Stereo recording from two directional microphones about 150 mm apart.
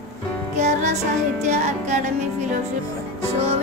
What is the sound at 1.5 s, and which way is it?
Music, 50° right (ahead or behind).